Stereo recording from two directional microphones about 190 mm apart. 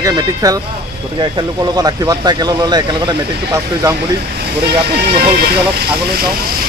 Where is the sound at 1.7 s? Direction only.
20° right (ahead or behind).